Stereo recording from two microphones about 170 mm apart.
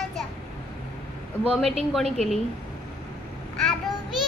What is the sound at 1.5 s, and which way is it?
Speech, centre (ahead or behind).